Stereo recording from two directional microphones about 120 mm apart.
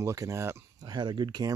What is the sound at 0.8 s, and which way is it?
Speech, 35° right (ahead or behind).